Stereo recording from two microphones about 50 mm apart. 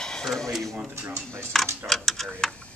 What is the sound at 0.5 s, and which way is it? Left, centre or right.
Speech, centre.